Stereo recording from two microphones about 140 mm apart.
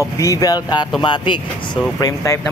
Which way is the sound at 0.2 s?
25° left (ahead or behind).